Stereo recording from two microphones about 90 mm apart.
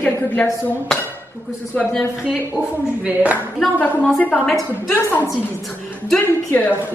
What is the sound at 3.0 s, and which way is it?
Speech, 15° right (ahead or behind).